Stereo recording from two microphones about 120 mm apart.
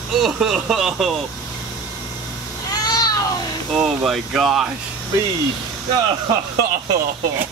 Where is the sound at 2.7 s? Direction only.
35° left (ahead or behind).